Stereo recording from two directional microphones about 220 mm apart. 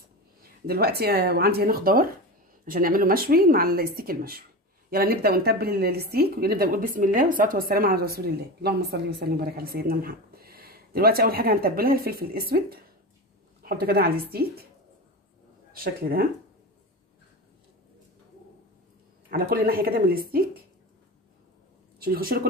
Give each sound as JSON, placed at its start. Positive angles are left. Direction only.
{"t": 0.4, "sound": "a woman's voice", "side_deg": -45}
{"t": 15.7, "sound": "a woman's voice", "side_deg": -40}
{"t": 19.3, "sound": "a woman's voice", "side_deg": -45}
{"t": 22.0, "sound": "a woman's voice", "side_deg": -45}